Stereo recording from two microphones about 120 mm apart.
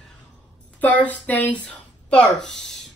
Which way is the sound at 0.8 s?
10° left (ahead or behind).